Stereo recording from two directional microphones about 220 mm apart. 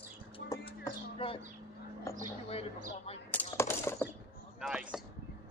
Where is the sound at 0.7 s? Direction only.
25° left (ahead or behind).